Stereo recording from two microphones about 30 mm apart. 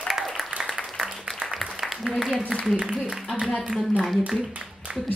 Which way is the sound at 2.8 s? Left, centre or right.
Right.